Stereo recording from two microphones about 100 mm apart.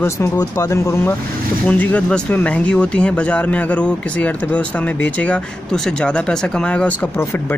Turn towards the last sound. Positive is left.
turn(degrees=10)  # may be behind; listen again after turning